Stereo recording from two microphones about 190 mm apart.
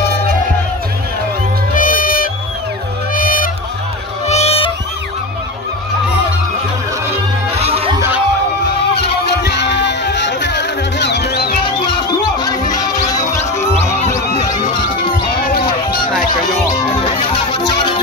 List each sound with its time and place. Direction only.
1.8 s music: 45° left (ahead or behind)
3.2 s a sound: 45° left (ahead or behind)
4.3 s music: 35° left (ahead or behind)
7.5 s music: 30° right (ahead or behind)
8.9 s music: 60° left (ahead or behind)
11.6 s music: 25° left (ahead or behind)
14.4 s music: 20° left (ahead or behind)
17.0 s music: 25° left (ahead or behind)